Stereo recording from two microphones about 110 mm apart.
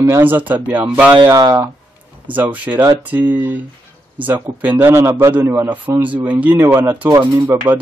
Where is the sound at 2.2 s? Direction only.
15° right (ahead or behind).